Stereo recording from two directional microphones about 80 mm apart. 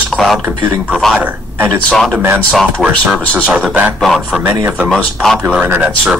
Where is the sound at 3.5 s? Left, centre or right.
Centre.